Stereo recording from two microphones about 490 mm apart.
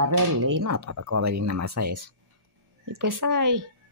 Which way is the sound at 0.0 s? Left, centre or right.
Right.